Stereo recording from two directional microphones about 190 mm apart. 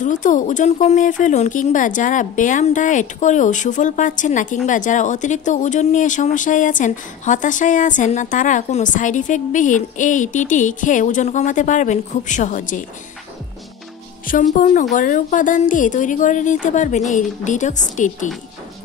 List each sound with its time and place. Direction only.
0.0 s speech: 40° left (ahead or behind)
14.2 s speech: 45° left (ahead or behind)